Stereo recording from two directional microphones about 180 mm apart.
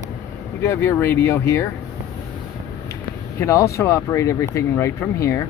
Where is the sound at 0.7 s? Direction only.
10° left (ahead or behind).